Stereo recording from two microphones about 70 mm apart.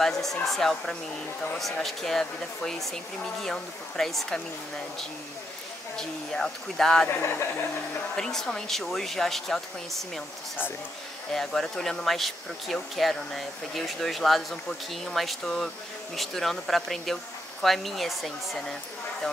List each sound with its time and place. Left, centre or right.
0.0 s speech: centre
5.9 s speech: centre
7.1 s speech: left
8.2 s speech: centre
11.3 s speech: centre